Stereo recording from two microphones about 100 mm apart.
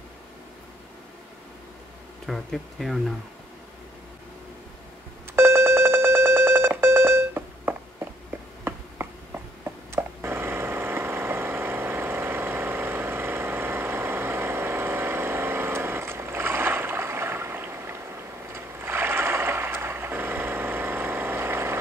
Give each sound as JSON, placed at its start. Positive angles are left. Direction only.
{"t": 2.2, "sound": "speech", "side_deg": 0}
{"t": 5.3, "sound": "telephone dialing", "side_deg": -25}
{"t": 8.6, "sound": "a sound", "side_deg": -25}